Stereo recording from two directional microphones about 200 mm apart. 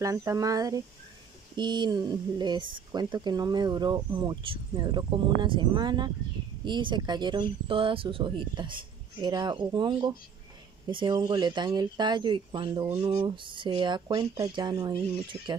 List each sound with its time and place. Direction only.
0.0 s speech: 15° right (ahead or behind)